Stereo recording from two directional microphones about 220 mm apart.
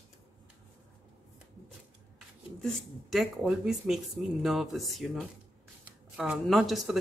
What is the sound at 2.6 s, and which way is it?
Speech, centre (ahead or behind).